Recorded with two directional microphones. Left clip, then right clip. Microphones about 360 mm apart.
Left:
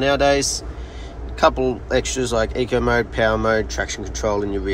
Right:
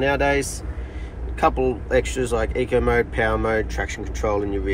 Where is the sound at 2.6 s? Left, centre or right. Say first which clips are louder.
Even; centre.